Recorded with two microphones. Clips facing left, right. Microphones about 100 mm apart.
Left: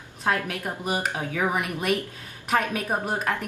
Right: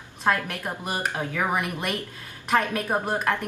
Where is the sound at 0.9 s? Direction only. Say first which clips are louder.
Left 1 dB; 10° left (ahead or behind).